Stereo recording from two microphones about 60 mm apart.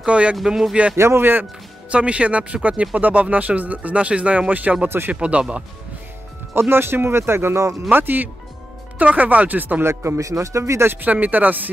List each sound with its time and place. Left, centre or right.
0.0 s speech: centre
0.5 s speech: centre
0.9 s speech: right
1.4 s speech: right
4.8 s speech: right
5.1 s speech: centre
6.5 s speech: right
7.9 s speech: right
9.8 s a man's voice: right
10.9 s speech: right